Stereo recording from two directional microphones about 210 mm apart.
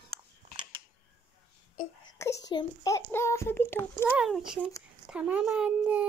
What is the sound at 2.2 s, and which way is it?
Speech, 15° left (ahead or behind).